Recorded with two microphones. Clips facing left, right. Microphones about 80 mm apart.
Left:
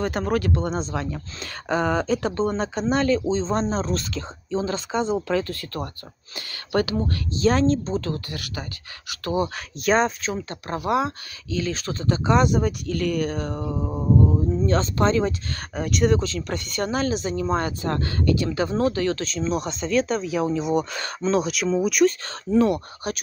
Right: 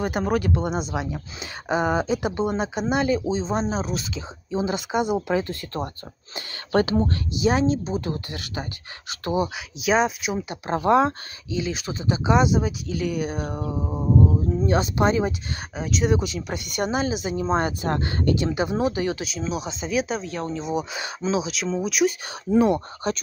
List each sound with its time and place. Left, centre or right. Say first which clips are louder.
0.0 s speech: even; centre
7.3 s speech: left 2 dB; centre
9.8 s speech: left 1 dB; centre
10.7 s speech: right 4 dB; right
11.4 s speech: left 1 dB; centre
13.7 s speech: even; centre
14.6 s speech: right 1 dB; centre
15.7 s speech: left 2 dB; centre
16.2 s speech: left 1 dB; centre
17.4 s speech: right 1 dB; right; by 22.0 s centre
22.5 s speech: even; right